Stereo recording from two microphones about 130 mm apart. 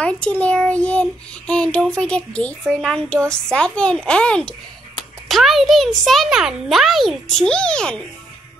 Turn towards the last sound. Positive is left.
turn(degrees=5)  # may be behind; listen again after turning